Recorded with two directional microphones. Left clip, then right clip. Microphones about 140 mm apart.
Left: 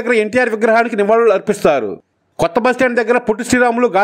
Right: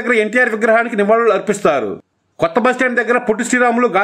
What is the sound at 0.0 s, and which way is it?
A man's voice, 35° left (ahead or behind).